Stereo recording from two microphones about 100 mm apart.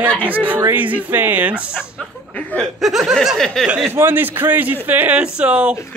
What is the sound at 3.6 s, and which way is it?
Speech, 10° right (ahead or behind).